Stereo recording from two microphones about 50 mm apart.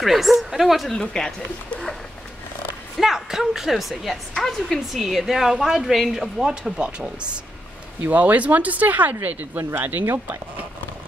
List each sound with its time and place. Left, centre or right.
0.0 s speech: centre
1.1 s a woman's voice: centre
3.0 s speech: centre
4.3 s a woman's voice: centre
4.9 s speech: centre
8.0 s speech: right